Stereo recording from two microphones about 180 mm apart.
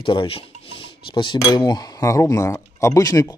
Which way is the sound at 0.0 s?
30° left (ahead or behind).